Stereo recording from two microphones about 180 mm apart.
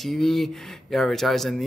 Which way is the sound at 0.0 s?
Centre (ahead or behind).